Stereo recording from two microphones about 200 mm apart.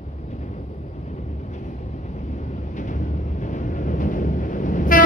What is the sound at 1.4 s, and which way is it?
Vehicle, 35° left (ahead or behind).